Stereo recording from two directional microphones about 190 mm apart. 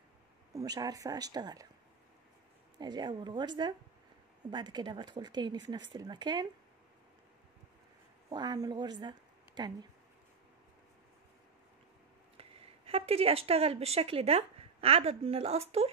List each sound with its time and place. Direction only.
0.5 s speech: 20° right (ahead or behind)
2.8 s speech: 25° right (ahead or behind)
8.3 s speech: 20° right (ahead or behind)
12.4 s speech: 30° right (ahead or behind)